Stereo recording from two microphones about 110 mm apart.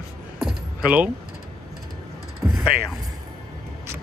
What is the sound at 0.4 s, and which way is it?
Keys jangling, 5° right (ahead or behind).